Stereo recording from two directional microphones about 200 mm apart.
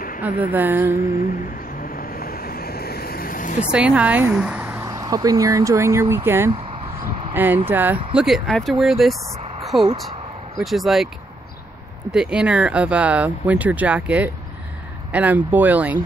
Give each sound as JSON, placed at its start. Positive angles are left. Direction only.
{"t": 0.2, "sound": "speech", "side_deg": -10}
{"t": 1.8, "sound": "vehicle", "side_deg": 45}
{"t": 3.7, "sound": "speech", "side_deg": -5}
{"t": 9.6, "sound": "a sound", "side_deg": 0}
{"t": 10.6, "sound": "speech", "side_deg": 0}
{"t": 12.1, "sound": "speech", "side_deg": -5}